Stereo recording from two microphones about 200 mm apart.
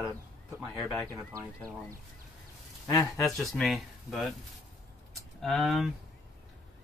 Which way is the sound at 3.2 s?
Centre (ahead or behind).